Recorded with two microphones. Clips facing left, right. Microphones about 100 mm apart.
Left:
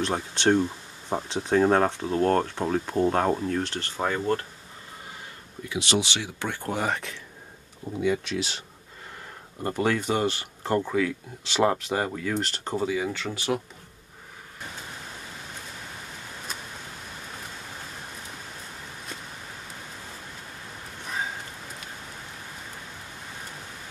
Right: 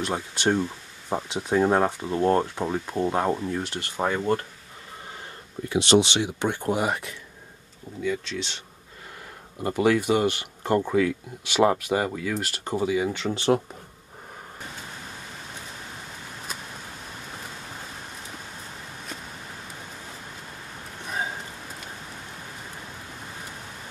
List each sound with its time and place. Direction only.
0.0 s speech: 5° right (ahead or behind)
5.7 s speech: 30° right (ahead or behind); by 7.2 s 5° right (ahead or behind)
8.3 s speech: 5° left (ahead or behind)
9.6 s speech: 15° right (ahead or behind)